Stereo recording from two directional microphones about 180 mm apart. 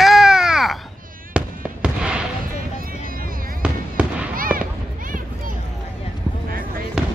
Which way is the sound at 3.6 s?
5° right (ahead or behind).